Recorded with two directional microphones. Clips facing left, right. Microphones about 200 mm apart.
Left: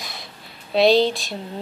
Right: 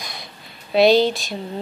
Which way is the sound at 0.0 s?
Centre (ahead or behind).